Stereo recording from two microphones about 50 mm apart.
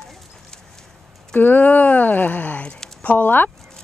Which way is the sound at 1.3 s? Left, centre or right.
Left.